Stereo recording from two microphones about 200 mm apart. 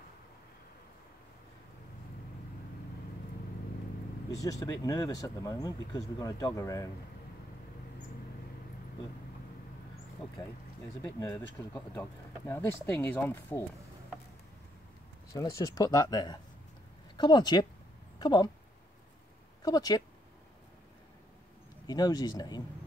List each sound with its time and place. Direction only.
4.3 s speech: 15° left (ahead or behind)
11.0 s speech: 15° left (ahead or behind)
15.3 s speech: 15° left (ahead or behind)
19.6 s speech: 20° left (ahead or behind)
21.8 s speech: 20° left (ahead or behind)